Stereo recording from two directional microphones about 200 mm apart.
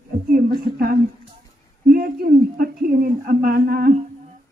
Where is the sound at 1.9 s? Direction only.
45° right (ahead or behind).